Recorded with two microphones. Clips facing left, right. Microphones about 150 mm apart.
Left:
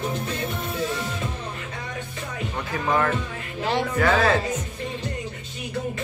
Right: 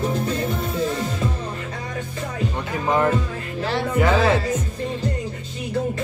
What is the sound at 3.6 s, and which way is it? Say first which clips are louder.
Music: even; 15° left (ahead or behind).